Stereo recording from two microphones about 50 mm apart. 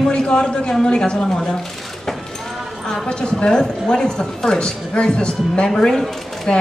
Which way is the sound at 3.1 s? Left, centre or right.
Centre.